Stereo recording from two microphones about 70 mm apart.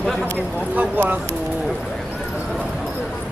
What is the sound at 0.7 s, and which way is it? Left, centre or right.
Speech, right.